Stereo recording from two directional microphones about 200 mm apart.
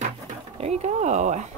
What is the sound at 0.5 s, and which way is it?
Speech, 30° right (ahead or behind).